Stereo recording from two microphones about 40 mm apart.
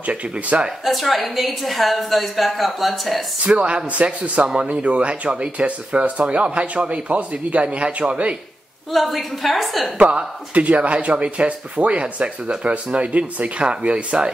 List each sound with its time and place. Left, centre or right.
0.0 s speech: right
0.8 s a woman's voice: centre
3.4 s speech: right
8.9 s a woman's voice: centre
9.9 s speech: right